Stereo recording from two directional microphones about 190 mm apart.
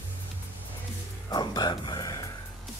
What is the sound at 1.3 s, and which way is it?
Music, 20° left (ahead or behind).